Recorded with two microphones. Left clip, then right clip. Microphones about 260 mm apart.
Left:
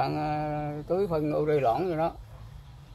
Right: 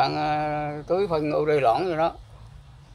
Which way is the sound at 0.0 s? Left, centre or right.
Right.